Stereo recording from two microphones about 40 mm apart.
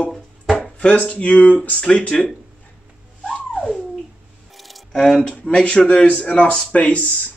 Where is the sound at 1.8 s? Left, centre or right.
Left.